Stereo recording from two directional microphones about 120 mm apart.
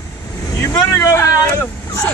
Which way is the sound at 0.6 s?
20° left (ahead or behind).